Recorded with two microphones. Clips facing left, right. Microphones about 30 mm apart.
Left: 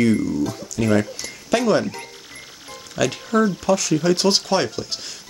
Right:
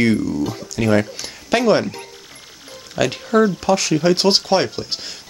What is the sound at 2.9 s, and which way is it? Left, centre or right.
Speech, right.